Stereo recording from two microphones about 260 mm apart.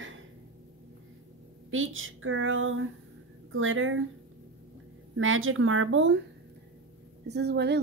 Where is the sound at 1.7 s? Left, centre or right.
Right.